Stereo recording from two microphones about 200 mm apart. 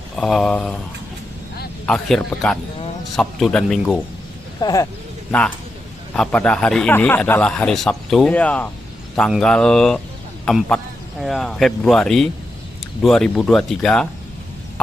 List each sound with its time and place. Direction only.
0.1 s speech: centre (ahead or behind)
1.9 s speech: 5° left (ahead or behind)
4.6 s speech: 20° left (ahead or behind)
6.1 s a man's voice: 5° left (ahead or behind)